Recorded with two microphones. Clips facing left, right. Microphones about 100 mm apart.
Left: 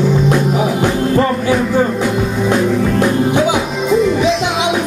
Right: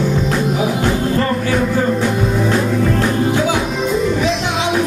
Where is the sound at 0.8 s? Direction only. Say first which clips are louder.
Left 3 dB; 15° left (ahead or behind).